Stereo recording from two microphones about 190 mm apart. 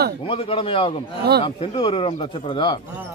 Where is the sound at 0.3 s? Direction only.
30° left (ahead or behind).